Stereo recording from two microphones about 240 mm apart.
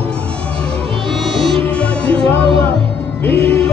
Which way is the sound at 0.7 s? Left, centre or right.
Right.